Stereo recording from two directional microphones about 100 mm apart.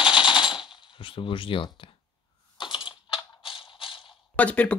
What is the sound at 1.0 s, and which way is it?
Speech, 60° left (ahead or behind).